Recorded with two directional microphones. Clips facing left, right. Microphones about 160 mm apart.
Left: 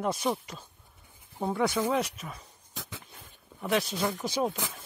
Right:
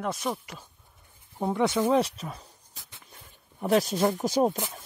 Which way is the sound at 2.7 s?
90° left.